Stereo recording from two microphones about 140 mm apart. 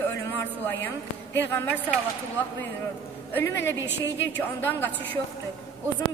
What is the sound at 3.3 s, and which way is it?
A woman's voice, 15° left (ahead or behind).